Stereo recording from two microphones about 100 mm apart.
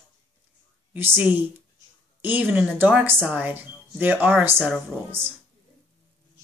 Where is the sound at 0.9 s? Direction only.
20° right (ahead or behind).